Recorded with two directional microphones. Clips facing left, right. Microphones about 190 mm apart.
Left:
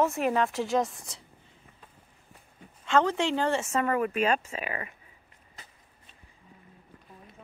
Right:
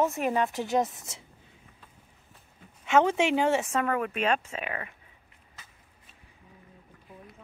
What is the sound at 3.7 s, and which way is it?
Speech, 5° left (ahead or behind).